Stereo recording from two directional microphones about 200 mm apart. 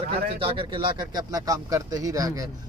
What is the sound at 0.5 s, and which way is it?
Speech, 25° right (ahead or behind).